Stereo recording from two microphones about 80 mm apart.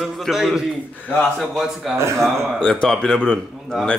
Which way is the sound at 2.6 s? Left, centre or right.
Centre.